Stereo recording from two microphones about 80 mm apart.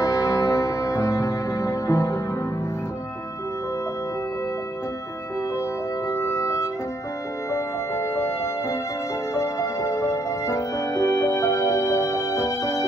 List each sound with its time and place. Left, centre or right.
0.0 s music: left
6.0 s music: left